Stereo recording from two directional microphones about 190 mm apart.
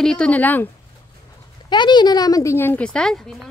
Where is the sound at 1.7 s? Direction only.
25° left (ahead or behind); by 3.5 s 5° left (ahead or behind).